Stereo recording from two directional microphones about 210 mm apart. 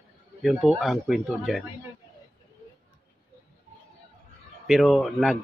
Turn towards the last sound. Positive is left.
turn(degrees=0)  # may be behind; listen again after turning